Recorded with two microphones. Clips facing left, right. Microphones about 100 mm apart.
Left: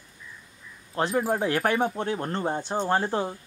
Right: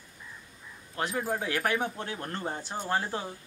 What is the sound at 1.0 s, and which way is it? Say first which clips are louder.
Speech: left 6 dB; 30° left (ahead or behind).